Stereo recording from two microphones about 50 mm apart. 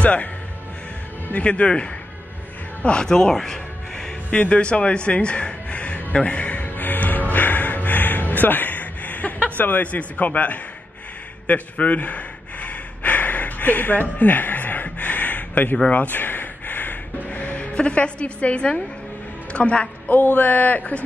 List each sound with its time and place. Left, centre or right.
0.0 s speech: left
1.3 s speech: left
4.3 s a man's voice: left
4.6 s a sound: left
11.4 s gasp: left
15.9 s music: left
19.5 s speech: left
20.1 s speech: left